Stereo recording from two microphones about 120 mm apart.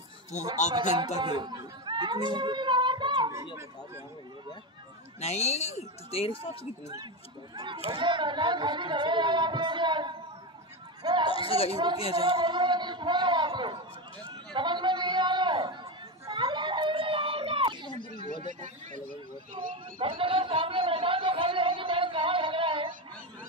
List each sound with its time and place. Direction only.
1.1 s speech: 40° right (ahead or behind)
2.3 s child singing: 40° right (ahead or behind)
5.2 s speech: 65° left (ahead or behind)
6.6 s speech: 30° right (ahead or behind)
11.3 s speech: 50° left (ahead or behind)
11.7 s speech: 35° right (ahead or behind)
14.2 s a sound: 40° right (ahead or behind)
18.3 s speech: 90° right
19.6 s a sound: 40° right (ahead or behind)
20.0 s chatter: 45° right (ahead or behind)